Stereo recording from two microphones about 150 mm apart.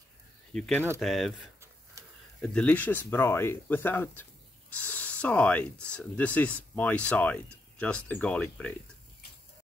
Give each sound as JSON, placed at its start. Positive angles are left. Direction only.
{"t": 0.5, "sound": "speech", "side_deg": 5}
{"t": 2.0, "sound": "a sound", "side_deg": -20}
{"t": 2.4, "sound": "speech", "side_deg": 10}